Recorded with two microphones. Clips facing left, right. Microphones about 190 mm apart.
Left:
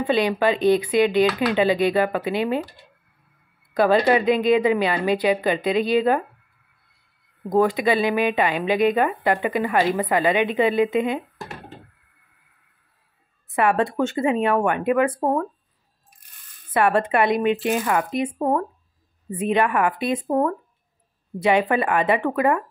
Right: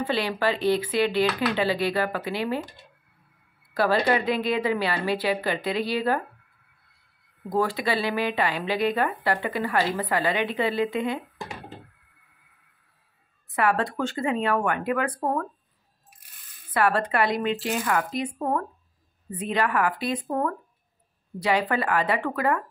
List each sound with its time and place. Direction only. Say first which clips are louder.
0.0 s speech: left 5 dB; 20° left (ahead or behind)
3.7 s speech: left 5 dB; 20° left (ahead or behind)
7.5 s speech: left 6 dB; 20° left (ahead or behind)
13.6 s speech: left 4 dB; 20° left (ahead or behind)
16.7 s speech: left 4 dB; 20° left (ahead or behind)